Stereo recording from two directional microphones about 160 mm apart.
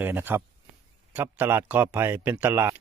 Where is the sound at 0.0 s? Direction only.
10° right (ahead or behind).